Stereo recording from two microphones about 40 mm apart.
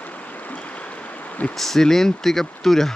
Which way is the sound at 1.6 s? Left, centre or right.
Centre.